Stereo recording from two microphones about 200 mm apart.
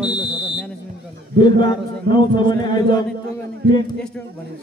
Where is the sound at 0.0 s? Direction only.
5° right (ahead or behind).